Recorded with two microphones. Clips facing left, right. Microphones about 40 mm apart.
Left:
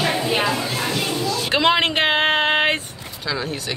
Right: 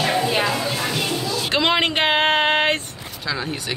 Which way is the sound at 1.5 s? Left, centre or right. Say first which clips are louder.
Left 1 dB; centre.